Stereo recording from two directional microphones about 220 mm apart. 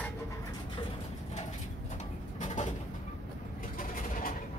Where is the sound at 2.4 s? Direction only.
35° left (ahead or behind).